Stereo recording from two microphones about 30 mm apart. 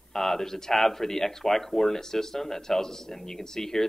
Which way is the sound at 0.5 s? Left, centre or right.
Centre.